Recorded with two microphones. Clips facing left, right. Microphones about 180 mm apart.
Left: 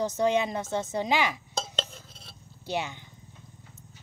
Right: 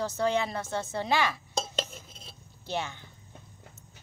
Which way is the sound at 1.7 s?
10° right (ahead or behind).